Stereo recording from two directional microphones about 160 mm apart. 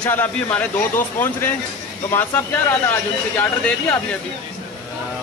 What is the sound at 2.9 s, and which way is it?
Speech, 10° left (ahead or behind).